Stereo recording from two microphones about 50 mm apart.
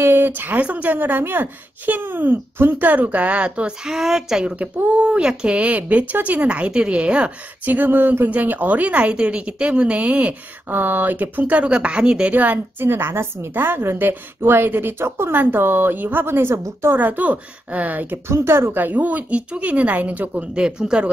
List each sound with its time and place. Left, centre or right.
0.0 s speech: right
3.8 s speech: centre
4.6 s speech: right
10.7 s speech: right
12.4 s speech: right
12.8 s a woman's voice: right
16.5 s a woman's voice: right
16.9 s speech: right
18.3 s speech: right
18.7 s speech: right
20.5 s speech: centre